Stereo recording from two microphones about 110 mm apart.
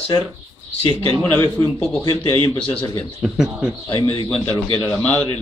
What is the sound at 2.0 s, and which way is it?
Speech, 40° left (ahead or behind).